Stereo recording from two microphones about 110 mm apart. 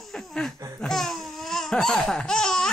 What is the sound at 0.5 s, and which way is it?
Laughter, 30° right (ahead or behind).